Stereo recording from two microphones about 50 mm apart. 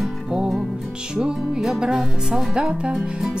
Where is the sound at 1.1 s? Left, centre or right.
Centre.